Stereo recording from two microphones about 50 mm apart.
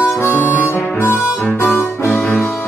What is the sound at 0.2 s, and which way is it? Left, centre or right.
Harmonica, left.